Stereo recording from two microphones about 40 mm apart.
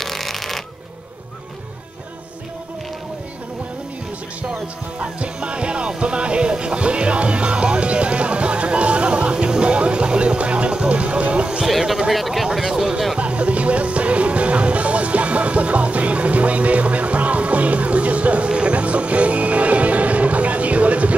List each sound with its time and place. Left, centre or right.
0.0 s shuffling cards: centre
4.9 s music: right
12.1 s speech: centre
12.5 s speech: centre
13.2 s music: right